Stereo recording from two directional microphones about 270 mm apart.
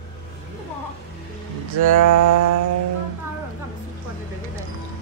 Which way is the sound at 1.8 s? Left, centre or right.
Right.